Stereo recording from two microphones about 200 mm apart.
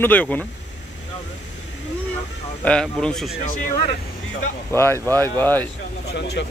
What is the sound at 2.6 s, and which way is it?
Speech, 5° left (ahead or behind).